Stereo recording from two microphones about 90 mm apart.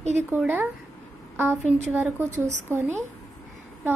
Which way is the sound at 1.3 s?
25° right (ahead or behind).